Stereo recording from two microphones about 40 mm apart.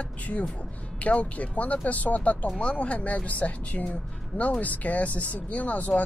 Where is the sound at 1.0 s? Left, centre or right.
Left.